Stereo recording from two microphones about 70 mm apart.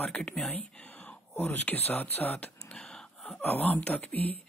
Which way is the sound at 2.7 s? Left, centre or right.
Centre.